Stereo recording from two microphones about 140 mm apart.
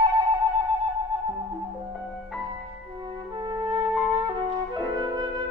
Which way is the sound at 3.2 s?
30° right (ahead or behind).